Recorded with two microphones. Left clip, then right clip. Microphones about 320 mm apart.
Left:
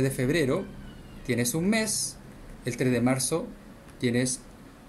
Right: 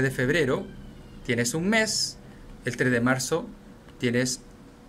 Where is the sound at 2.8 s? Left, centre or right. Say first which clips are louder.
Right 2 dB; right.